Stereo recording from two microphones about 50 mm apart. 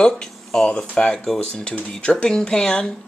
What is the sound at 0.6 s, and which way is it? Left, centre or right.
Speech, left.